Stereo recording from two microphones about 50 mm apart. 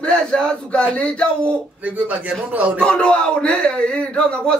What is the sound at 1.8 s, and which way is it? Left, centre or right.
Speech, right.